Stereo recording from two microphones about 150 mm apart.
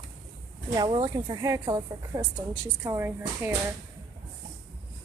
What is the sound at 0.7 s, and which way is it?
A woman's voice, 30° right (ahead or behind).